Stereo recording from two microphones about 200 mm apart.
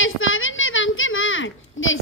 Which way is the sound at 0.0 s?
75° left (ahead or behind).